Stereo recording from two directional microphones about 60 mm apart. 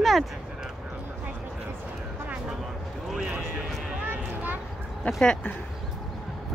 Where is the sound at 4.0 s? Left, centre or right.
Right.